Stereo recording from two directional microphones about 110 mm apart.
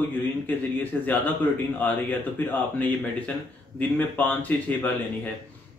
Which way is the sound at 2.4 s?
15° left (ahead or behind).